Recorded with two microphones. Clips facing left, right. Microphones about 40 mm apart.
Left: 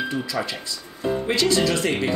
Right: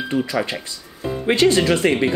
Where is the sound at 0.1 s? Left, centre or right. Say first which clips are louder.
Right 5 dB; right.